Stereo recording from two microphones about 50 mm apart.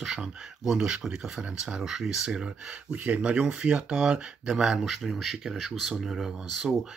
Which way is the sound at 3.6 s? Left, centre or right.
Centre.